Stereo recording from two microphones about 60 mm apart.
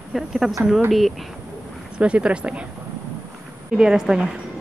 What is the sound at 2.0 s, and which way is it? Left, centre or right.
Speech, centre.